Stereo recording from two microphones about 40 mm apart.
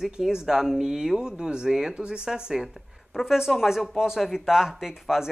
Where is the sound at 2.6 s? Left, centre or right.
Centre.